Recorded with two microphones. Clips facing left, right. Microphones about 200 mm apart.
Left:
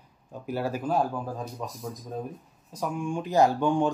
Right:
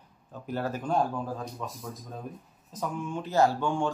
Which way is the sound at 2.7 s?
15° left (ahead or behind).